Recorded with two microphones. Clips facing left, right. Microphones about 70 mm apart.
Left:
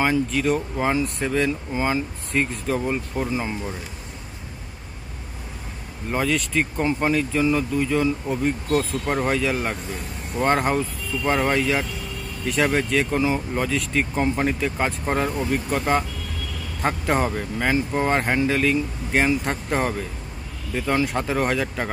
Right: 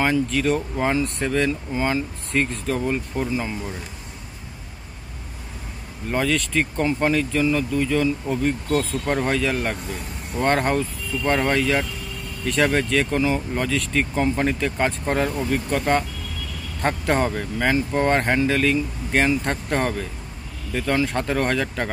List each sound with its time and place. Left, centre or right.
0.0 s speech: centre
3.3 s speech: left
6.0 s speech: centre